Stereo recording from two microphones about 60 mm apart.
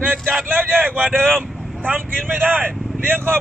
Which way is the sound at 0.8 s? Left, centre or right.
Right.